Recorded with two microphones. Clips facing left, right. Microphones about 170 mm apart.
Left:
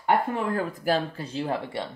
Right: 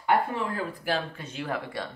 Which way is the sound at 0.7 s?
40° left (ahead or behind).